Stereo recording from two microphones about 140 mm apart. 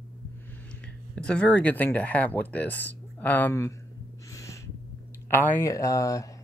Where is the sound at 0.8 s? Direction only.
5° left (ahead or behind).